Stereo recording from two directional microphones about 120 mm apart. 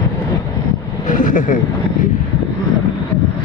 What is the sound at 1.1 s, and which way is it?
Vehicle, 90° left.